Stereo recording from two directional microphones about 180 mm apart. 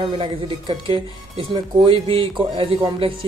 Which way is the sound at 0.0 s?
30° right (ahead or behind).